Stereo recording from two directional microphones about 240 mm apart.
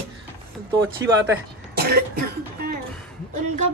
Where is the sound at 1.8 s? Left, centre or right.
Right.